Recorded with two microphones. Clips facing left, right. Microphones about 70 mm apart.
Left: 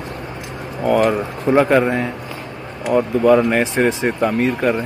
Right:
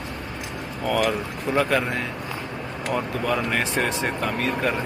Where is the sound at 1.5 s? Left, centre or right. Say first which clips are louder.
Left 8 dB; left.